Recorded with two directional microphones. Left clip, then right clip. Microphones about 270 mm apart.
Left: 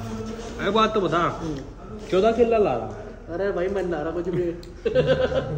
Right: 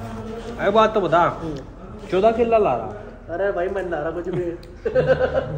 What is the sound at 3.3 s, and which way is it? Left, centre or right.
Speech, centre.